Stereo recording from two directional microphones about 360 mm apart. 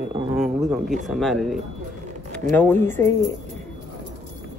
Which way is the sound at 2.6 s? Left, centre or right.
Centre.